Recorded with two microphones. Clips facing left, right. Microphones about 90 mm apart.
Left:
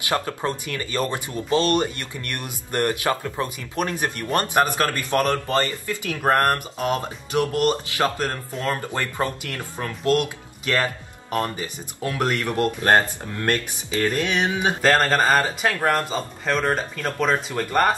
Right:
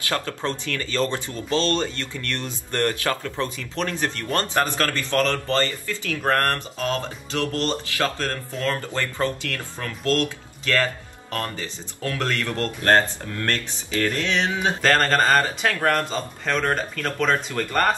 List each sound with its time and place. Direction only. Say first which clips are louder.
0.0 s speech: left 2 dB; 20° left (ahead or behind)
14.8 s speech: left 1 dB; 5° left (ahead or behind)